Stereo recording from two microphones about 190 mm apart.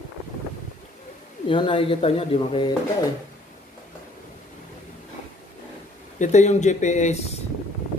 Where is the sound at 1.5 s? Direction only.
25° left (ahead or behind).